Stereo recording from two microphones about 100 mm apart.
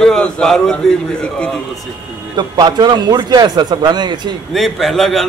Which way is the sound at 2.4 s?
45° right (ahead or behind).